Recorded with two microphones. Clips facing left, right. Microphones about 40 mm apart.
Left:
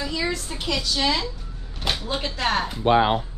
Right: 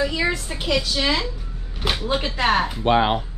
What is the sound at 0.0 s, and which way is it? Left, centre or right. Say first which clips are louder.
A woman's voice: right 4 dB; centre.